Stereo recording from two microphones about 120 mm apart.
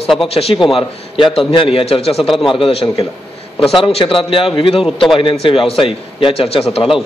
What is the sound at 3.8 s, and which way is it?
A man's voice, 45° left (ahead or behind).